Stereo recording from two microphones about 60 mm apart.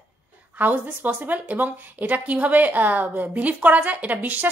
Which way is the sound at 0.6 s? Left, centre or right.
Right.